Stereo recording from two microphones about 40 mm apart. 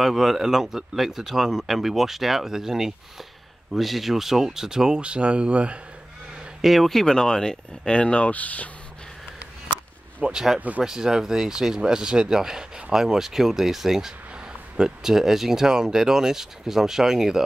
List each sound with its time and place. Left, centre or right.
0.0 s speech: centre
5.0 s speech: right
6.6 s speech: centre
6.9 s speech: centre
8.3 s speech: left
10.3 s speech: centre